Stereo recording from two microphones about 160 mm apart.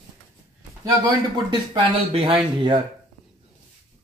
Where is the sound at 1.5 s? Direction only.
30° right (ahead or behind).